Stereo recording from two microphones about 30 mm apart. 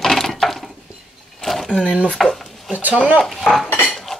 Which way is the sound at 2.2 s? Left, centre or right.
Centre.